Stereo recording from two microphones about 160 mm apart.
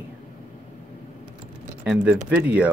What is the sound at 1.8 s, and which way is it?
Speech, 5° right (ahead or behind).